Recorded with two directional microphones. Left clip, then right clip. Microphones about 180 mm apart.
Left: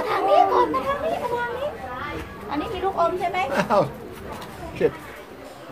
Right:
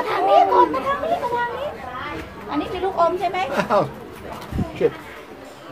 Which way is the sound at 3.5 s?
20° left (ahead or behind).